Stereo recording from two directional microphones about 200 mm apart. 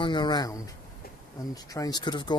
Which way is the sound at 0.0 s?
20° left (ahead or behind).